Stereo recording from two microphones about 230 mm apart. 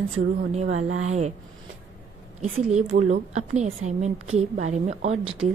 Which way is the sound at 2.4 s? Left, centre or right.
Right.